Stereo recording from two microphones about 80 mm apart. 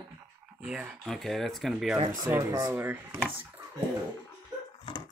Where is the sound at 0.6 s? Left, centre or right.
Centre.